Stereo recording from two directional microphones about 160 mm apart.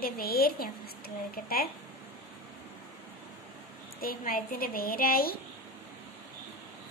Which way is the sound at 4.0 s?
65° left (ahead or behind).